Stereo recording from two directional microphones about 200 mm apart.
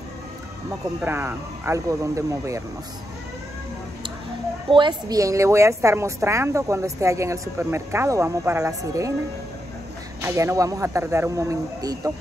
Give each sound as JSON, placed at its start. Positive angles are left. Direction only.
{"t": 1.0, "sound": "a woman's voice", "side_deg": -10}
{"t": 4.6, "sound": "a woman's voice", "side_deg": -25}
{"t": 10.2, "sound": "a woman's voice", "side_deg": -15}